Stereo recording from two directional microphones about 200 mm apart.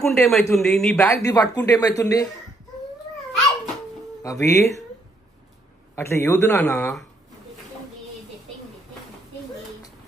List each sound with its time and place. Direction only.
0.0 s speech: centre (ahead or behind)
1.0 s speech: 15° left (ahead or behind)
4.2 s speech: 15° left (ahead or behind)
5.9 s speech: 15° left (ahead or behind)